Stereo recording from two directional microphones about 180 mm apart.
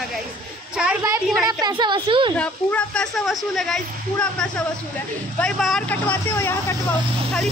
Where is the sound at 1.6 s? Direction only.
25° right (ahead or behind).